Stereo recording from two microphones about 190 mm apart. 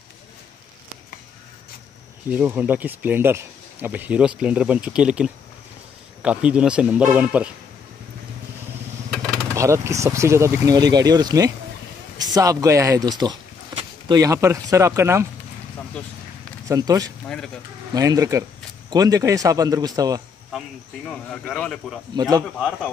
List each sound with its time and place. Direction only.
2.2 s speech: 10° right (ahead or behind)
9.6 s speech: 15° right (ahead or behind)
16.6 s speech: 20° right (ahead or behind)
21.1 s speech: 5° left (ahead or behind)
22.1 s speech: 20° right (ahead or behind)